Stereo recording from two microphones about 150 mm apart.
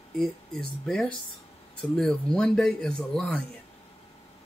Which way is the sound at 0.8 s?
5° left (ahead or behind).